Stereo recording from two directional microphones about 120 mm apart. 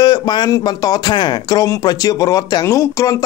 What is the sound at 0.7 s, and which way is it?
Speech, 35° left (ahead or behind).